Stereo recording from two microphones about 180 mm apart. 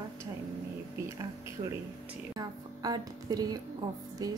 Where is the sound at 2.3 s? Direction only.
20° right (ahead or behind).